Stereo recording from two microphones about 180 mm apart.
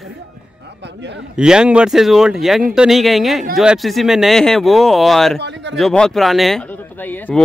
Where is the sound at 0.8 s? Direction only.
75° right (ahead or behind).